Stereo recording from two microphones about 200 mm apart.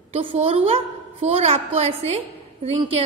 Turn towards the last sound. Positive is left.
turn(degrees=-30)  # may be behind; listen again after turning